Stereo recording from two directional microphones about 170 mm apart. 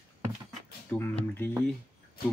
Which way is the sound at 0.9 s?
10° left (ahead or behind).